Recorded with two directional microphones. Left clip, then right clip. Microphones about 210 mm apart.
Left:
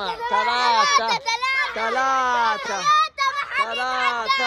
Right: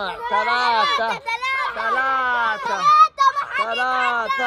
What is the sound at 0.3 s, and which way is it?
Speech, 15° left (ahead or behind).